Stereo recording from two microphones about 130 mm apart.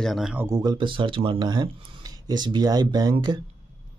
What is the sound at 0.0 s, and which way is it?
Speech, centre (ahead or behind).